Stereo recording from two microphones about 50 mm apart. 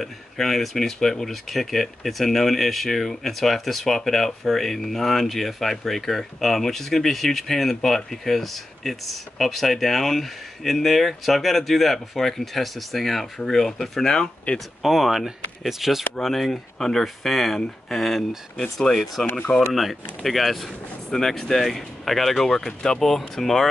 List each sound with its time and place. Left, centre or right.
0.0 s speech: centre
14.8 s speech: centre